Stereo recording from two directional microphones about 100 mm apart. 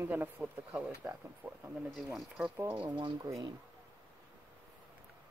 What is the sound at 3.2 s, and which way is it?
Speech, 35° right (ahead or behind).